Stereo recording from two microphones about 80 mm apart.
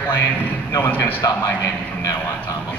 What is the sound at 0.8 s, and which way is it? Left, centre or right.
Speech, left.